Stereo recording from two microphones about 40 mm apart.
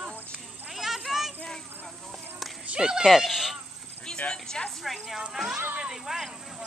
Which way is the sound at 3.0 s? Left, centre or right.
Centre.